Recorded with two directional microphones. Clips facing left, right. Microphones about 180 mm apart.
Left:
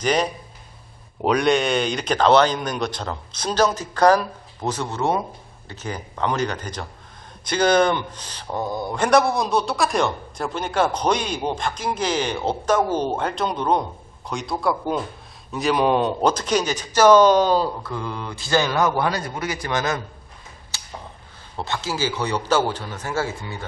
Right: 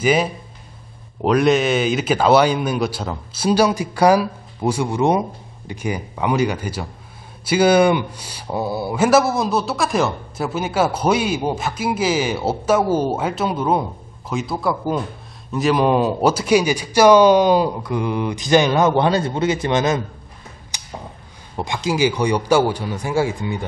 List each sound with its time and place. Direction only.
0.0 s a man's voice: 5° right (ahead or behind)
20.7 s a sound: 15° right (ahead or behind)
21.5 s a man's voice: 15° right (ahead or behind)